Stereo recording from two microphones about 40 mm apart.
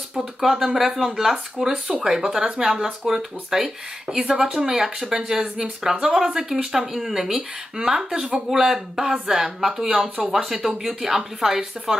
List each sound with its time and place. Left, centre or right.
0.4 s speech: centre
1.6 s speech: right
2.0 s speech: centre
8.1 s speech: right
8.5 s speech: centre
10.2 s speech: centre